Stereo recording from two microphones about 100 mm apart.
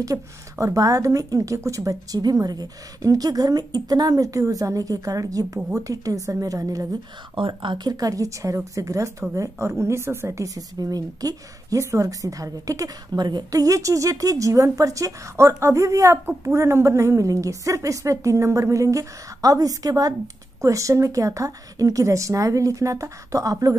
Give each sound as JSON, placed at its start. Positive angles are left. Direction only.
{"t": 0.0, "sound": "a woman's voice", "side_deg": -35}
{"t": 7.3, "sound": "a woman's voice", "side_deg": -55}